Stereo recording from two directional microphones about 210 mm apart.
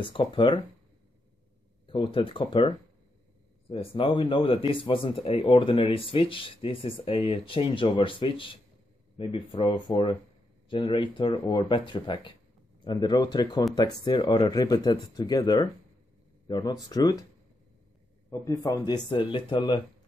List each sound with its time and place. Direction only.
0.0 s speech: 25° left (ahead or behind)
1.9 s speech: 25° left (ahead or behind)
18.3 s speech: 15° left (ahead or behind)